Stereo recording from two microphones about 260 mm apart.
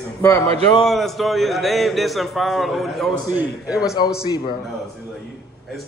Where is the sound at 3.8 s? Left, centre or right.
Centre.